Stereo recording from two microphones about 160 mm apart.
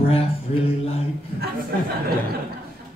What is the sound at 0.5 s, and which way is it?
Mantra, 45° left (ahead or behind).